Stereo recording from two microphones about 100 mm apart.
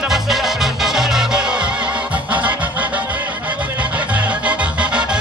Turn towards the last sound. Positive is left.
turn(degrees=-10)  # may be behind; listen again after turning